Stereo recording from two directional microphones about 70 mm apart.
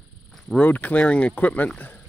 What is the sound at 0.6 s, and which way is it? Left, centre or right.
Speech, left.